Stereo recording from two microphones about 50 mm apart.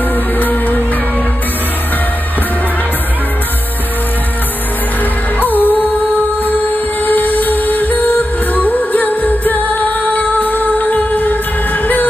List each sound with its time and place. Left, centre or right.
0.1 s music: left
5.4 s music: left